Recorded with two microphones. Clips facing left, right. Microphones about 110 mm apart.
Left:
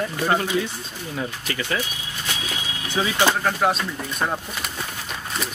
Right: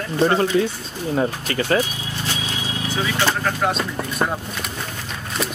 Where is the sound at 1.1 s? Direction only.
40° right (ahead or behind).